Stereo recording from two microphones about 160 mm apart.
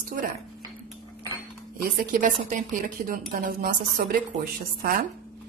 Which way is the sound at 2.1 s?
55° right (ahead or behind).